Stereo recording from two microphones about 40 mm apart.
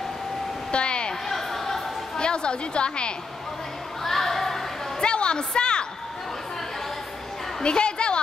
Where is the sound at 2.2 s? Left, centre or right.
Left.